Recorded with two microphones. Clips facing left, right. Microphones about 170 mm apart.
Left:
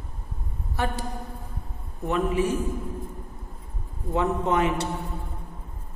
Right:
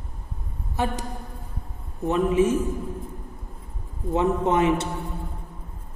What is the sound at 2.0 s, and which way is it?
Speech, 20° right (ahead or behind).